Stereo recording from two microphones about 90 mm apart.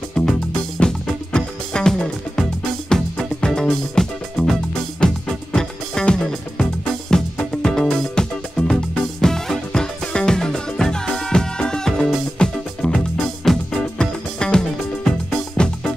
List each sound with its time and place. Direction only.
0.1 s music: 5° left (ahead or behind)